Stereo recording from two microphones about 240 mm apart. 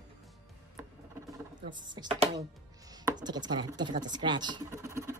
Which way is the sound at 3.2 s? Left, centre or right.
Centre.